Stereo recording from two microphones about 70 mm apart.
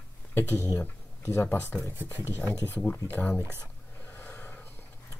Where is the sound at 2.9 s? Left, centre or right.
Left.